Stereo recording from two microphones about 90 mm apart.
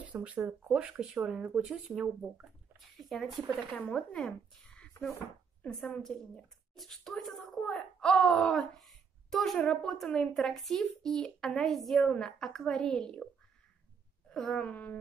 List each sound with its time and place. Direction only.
0.0 s speech: 15° right (ahead or behind)
3.0 s a sound: centre (ahead or behind)
3.9 s speech: 5° left (ahead or behind)
5.7 s a woman's voice: 5° left (ahead or behind)
14.3 s wail: 5° left (ahead or behind)